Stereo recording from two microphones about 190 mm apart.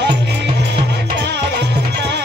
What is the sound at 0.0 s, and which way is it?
Music, 65° right (ahead or behind).